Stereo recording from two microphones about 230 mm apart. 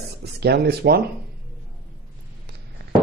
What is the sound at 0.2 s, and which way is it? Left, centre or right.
Speech, right.